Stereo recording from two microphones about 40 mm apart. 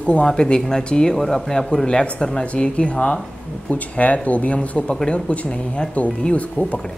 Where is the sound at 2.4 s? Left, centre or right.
Left.